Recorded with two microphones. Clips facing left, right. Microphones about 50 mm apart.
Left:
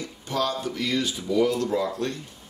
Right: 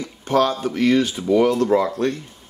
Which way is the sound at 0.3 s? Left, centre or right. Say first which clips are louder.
Right 8 dB; right.